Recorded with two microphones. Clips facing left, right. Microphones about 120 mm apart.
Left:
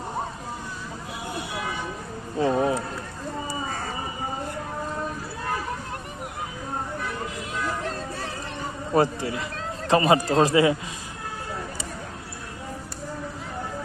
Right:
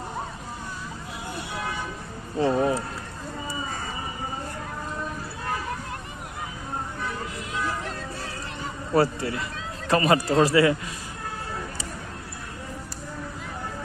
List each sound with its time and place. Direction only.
2.4 s a man's voice: 10° left (ahead or behind)
8.9 s a man's voice: 15° left (ahead or behind)